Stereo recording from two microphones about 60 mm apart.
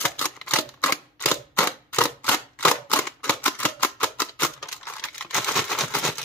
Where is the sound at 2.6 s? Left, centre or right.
Left.